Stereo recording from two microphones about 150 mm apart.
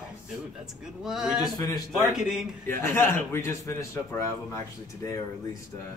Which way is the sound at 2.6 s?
15° left (ahead or behind).